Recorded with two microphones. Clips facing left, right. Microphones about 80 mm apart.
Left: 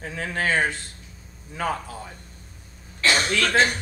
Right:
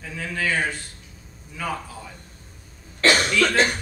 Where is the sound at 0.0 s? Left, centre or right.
Left.